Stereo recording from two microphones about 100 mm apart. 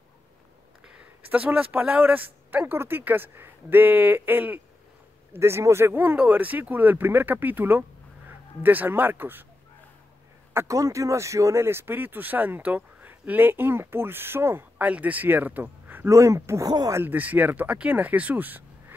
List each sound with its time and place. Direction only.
0.8 s speech: 10° right (ahead or behind)
10.5 s speech: 30° right (ahead or behind)
16.1 s speech: 30° right (ahead or behind)
17.0 s speech: 20° right (ahead or behind)